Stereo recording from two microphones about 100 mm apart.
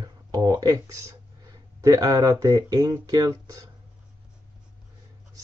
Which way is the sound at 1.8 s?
35° right (ahead or behind).